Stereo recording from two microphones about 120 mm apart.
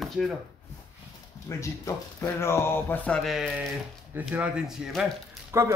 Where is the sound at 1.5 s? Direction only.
25° left (ahead or behind); by 3.4 s centre (ahead or behind).